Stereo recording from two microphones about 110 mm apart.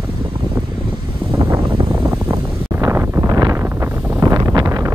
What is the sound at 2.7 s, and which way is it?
Wind noise, 25° right (ahead or behind).